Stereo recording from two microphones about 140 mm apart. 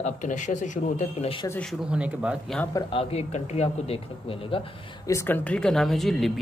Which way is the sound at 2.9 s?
45° left (ahead or behind).